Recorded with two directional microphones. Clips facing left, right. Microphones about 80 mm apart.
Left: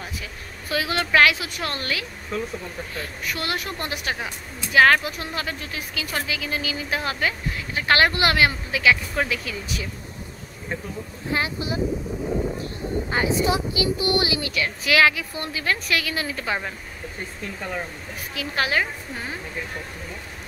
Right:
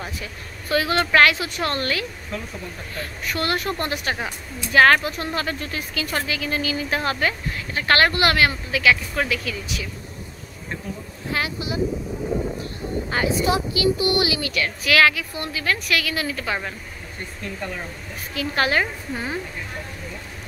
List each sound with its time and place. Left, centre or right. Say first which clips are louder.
0.2 s a woman's voice: right 2 dB; centre; by 9.6 s left
11.2 s a woman's voice: even; left
13.1 s a woman's voice: right 1 dB; centre
18.3 s a woman's voice: right 3 dB; centre